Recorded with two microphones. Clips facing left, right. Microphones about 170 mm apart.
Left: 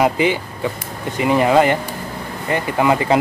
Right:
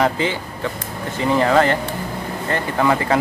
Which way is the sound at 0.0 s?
15° left (ahead or behind).